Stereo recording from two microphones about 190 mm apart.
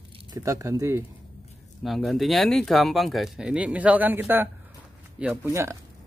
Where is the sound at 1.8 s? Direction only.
Centre (ahead or behind).